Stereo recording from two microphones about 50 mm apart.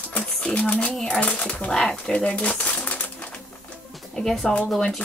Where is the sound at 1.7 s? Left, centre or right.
Centre.